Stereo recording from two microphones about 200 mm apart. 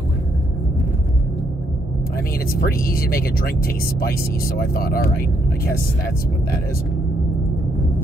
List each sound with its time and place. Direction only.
2.6 s speech: 45° left (ahead or behind)